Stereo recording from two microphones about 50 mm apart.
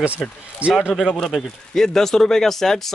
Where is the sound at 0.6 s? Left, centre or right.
Right.